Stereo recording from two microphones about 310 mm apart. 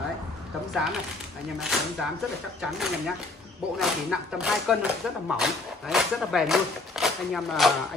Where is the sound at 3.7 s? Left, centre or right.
Centre.